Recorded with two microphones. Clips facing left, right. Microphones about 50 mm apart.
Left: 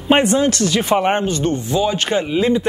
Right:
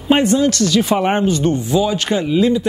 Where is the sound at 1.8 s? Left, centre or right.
Centre.